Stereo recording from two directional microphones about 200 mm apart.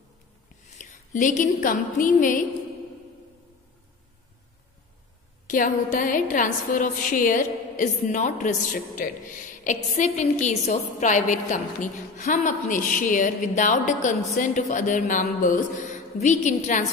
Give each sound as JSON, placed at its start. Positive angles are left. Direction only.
{"t": 0.7, "sound": "a woman's voice", "side_deg": 40}
{"t": 5.5, "sound": "a woman's voice", "side_deg": 40}